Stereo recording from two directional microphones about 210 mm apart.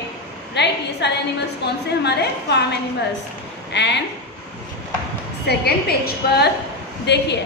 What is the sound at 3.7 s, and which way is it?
Speech, 55° left (ahead or behind).